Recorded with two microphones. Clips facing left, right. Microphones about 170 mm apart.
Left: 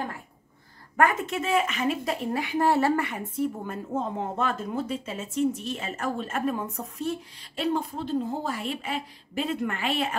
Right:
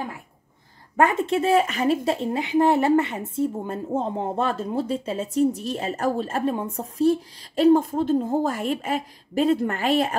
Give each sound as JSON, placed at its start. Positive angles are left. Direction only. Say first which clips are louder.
{"t": 0.9, "sound": "a woman's voice", "louder": "right 4 dB", "side_deg": -25}